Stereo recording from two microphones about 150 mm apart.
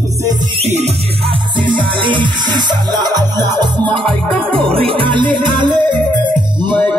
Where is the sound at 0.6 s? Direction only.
45° right (ahead or behind).